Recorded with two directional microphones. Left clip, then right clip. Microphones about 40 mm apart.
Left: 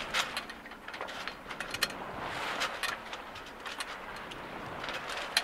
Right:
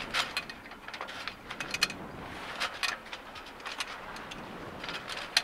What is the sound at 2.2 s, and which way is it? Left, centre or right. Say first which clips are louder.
Vehicle: left 6 dB; left.